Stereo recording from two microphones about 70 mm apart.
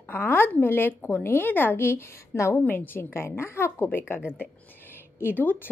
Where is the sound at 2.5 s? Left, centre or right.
Left.